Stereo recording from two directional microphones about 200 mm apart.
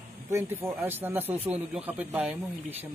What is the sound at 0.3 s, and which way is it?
A woman's voice, 10° right (ahead or behind).